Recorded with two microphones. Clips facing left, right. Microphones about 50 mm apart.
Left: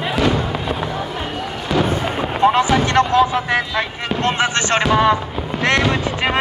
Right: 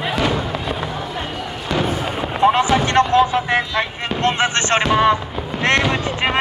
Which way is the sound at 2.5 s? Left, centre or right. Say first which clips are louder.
Even; right.